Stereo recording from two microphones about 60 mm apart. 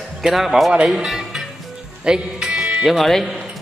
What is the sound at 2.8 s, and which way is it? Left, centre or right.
Speech, centre.